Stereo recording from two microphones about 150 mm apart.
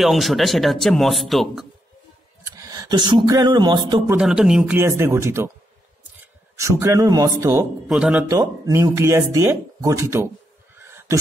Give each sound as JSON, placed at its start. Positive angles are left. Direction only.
{"t": 0.0, "sound": "speech", "side_deg": 0}
{"t": 2.5, "sound": "speech", "side_deg": -25}
{"t": 4.2, "sound": "speech", "side_deg": -5}
{"t": 4.7, "sound": "speech", "side_deg": -20}
{"t": 7.9, "sound": "speech", "side_deg": -5}
{"t": 8.3, "sound": "speech", "side_deg": -25}
{"t": 10.8, "sound": "honk", "side_deg": -15}